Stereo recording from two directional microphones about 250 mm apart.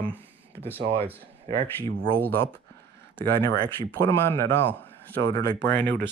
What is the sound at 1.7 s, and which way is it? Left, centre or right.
Speech, centre.